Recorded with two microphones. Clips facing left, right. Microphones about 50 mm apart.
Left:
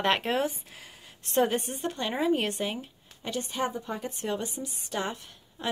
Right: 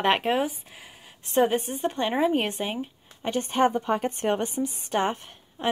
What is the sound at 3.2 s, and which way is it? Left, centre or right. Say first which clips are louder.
Speech: right 8 dB; right.